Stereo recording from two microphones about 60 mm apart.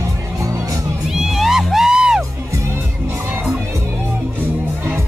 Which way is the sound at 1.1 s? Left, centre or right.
Centre.